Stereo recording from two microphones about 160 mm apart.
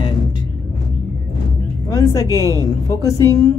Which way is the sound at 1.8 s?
20° left (ahead or behind).